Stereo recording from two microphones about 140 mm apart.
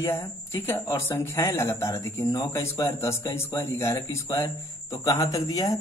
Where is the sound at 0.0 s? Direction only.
20° left (ahead or behind).